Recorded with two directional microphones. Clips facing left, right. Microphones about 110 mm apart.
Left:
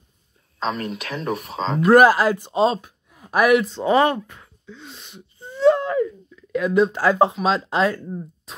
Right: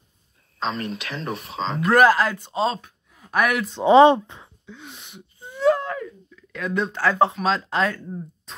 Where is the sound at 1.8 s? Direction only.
15° left (ahead or behind).